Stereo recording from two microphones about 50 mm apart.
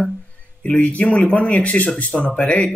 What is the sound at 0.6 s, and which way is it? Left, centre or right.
Speech, left.